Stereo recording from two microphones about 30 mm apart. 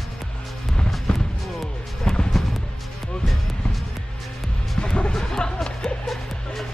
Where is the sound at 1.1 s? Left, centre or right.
Left.